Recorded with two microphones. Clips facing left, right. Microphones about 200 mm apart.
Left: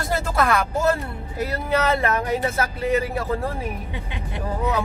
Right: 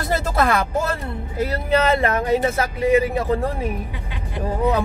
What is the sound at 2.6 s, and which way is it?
Speech, 15° right (ahead or behind).